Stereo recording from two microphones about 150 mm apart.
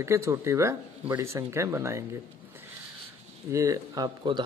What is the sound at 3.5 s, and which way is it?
Speech, 20° right (ahead or behind).